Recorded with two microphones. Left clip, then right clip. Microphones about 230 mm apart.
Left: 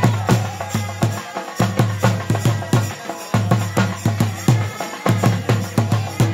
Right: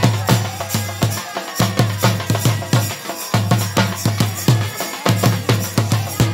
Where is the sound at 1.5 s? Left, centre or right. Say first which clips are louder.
Right 2 dB; right.